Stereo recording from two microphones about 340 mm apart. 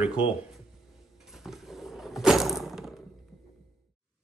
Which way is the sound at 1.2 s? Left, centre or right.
Centre.